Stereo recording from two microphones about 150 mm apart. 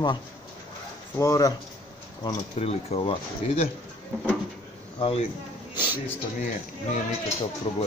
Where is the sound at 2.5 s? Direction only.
40° left (ahead or behind).